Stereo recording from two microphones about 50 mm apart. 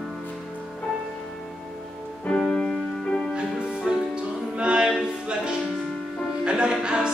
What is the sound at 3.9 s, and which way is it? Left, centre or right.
Music, centre.